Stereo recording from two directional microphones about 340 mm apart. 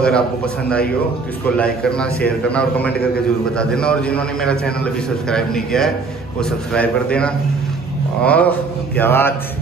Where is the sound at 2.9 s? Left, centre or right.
Left.